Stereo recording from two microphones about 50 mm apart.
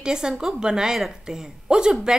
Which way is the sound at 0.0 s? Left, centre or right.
Centre.